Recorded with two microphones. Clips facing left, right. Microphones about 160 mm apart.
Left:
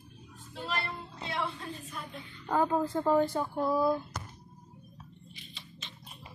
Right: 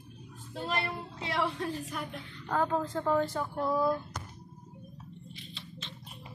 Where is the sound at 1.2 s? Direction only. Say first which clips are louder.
Right 4 dB; 85° right.